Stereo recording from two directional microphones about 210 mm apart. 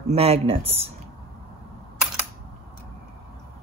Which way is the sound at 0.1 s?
30° right (ahead or behind).